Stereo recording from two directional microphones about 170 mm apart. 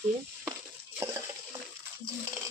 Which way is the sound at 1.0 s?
20° right (ahead or behind).